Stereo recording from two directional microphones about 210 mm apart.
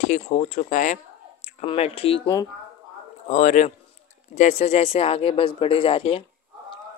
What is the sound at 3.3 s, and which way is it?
Speech, 35° left (ahead or behind).